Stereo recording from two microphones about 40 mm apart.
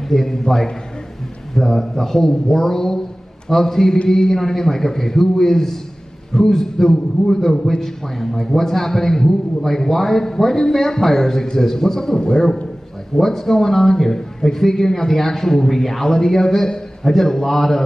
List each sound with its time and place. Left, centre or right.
0.1 s a man's voice: centre
13.1 s a man's voice: centre